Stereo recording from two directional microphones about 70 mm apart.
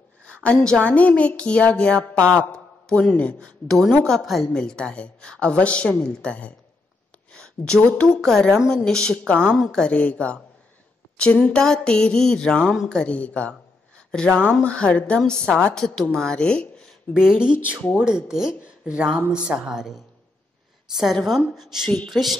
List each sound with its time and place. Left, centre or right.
0.2 s a sound: centre
0.6 s a woman's voice: centre
4.6 s speech: centre
8.2 s speech: centre
17.1 s a woman's voice: centre